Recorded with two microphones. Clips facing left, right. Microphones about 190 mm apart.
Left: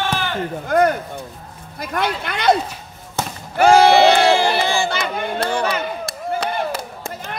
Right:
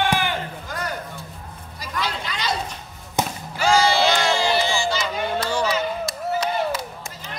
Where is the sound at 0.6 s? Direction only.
55° left (ahead or behind).